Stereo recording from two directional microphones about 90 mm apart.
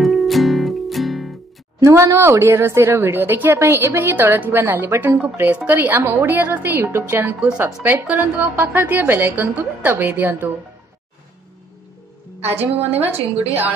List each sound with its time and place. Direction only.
0.0 s music: centre (ahead or behind)
1.8 s speech: 30° right (ahead or behind)
12.4 s speech: 20° right (ahead or behind)